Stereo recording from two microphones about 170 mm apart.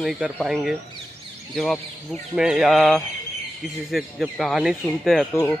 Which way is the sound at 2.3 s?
5° right (ahead or behind).